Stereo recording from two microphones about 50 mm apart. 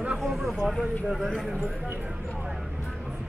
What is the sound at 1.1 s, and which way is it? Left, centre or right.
Speech, centre.